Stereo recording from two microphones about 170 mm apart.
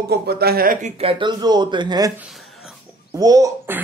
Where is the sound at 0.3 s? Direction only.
65° right (ahead or behind).